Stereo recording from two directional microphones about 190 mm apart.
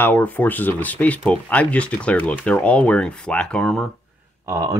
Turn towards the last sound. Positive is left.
turn(degrees=-15)  # may be behind; listen again after turning